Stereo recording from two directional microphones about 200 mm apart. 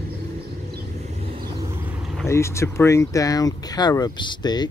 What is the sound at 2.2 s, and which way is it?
Speech, 15° left (ahead or behind).